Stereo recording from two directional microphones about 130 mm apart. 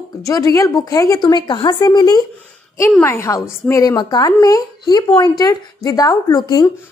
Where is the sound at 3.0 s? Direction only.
20° left (ahead or behind).